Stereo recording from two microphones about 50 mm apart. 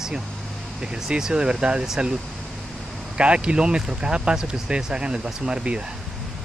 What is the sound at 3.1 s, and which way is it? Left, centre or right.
Speech, right.